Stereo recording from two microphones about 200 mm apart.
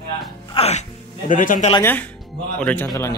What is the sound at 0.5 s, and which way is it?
A man's voice, 30° left (ahead or behind).